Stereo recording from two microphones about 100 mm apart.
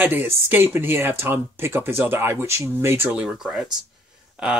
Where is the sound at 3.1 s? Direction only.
5° right (ahead or behind).